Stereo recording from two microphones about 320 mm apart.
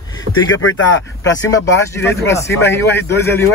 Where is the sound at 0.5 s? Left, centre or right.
Left.